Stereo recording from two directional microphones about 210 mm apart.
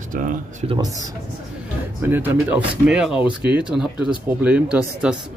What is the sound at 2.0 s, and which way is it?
Speech, 10° right (ahead or behind).